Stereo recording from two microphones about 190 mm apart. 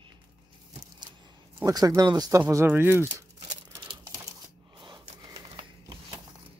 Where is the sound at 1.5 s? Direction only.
20° right (ahead or behind).